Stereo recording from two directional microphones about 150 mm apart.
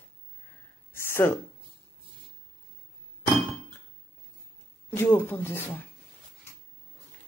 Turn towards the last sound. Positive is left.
turn(degrees=15)  # may be behind; listen again after turning